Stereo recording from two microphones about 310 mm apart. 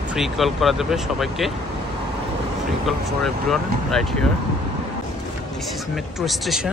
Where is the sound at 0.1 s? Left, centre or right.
Centre.